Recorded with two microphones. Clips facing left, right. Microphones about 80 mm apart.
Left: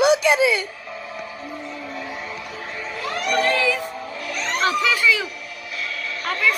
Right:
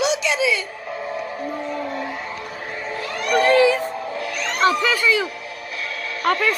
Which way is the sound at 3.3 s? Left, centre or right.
Right.